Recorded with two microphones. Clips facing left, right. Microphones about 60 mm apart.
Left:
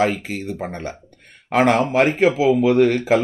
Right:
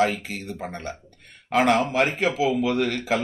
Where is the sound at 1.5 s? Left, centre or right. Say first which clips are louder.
Left 4 dB; left.